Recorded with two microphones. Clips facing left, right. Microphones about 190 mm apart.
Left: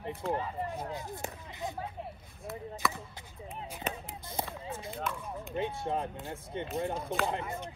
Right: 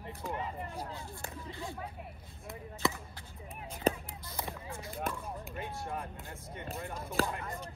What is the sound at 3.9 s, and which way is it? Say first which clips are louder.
Speech: right 8 dB; 30° right (ahead or behind).